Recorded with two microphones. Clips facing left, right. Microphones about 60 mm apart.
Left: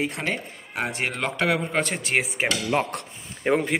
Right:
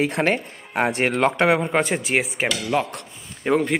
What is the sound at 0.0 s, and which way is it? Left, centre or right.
Speech, right.